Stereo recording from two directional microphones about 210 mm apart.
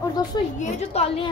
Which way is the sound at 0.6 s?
30° left (ahead or behind).